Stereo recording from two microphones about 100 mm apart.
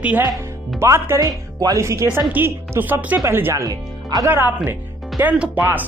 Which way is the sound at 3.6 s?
35° right (ahead or behind).